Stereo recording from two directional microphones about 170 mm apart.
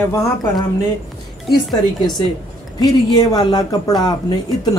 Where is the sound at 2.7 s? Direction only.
20° left (ahead or behind).